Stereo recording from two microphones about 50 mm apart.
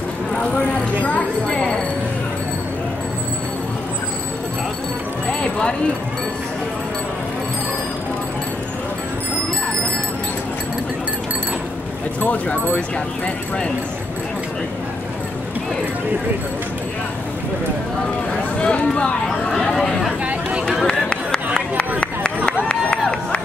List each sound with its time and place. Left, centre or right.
0.4 s speech: left
1.5 s speech: centre
5.4 s speech: centre
12.2 s speech: left
18.6 s a sound: centre
19.5 s a sound: centre
20.8 s run: centre